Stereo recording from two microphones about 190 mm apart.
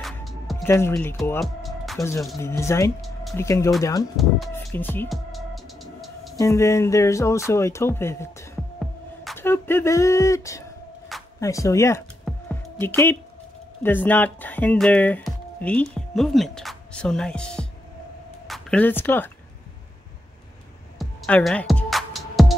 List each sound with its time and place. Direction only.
0.0 s music: centre (ahead or behind)
0.7 s speech: 15° left (ahead or behind)
1.4 s music: centre (ahead or behind)
2.0 s speech: 15° left (ahead or behind)
4.2 s speech: centre (ahead or behind)
4.7 s speech: 10° left (ahead or behind)
5.1 s music: centre (ahead or behind)
6.3 s speech: 15° left (ahead or behind)
12.3 s music: 10° left (ahead or behind)
13.8 s speech: 10° left (ahead or behind)
21.0 s music: 5° left (ahead or behind)